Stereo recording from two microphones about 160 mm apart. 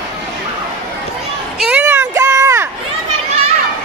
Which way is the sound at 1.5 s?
5° right (ahead or behind).